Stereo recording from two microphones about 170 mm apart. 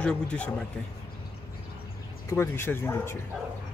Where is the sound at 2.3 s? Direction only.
15° left (ahead or behind).